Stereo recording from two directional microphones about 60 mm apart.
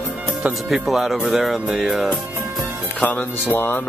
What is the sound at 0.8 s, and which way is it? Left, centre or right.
Speech, centre.